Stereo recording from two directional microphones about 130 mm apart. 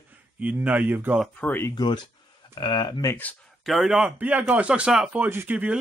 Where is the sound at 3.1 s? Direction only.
15° left (ahead or behind).